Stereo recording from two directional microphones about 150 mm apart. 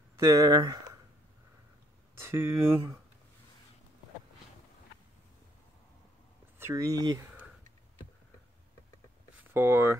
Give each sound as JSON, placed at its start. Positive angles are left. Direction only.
{"t": 0.2, "sound": "speech", "side_deg": -20}
{"t": 2.1, "sound": "speech", "side_deg": -15}
{"t": 6.6, "sound": "speech", "side_deg": -20}
{"t": 9.5, "sound": "speech", "side_deg": -15}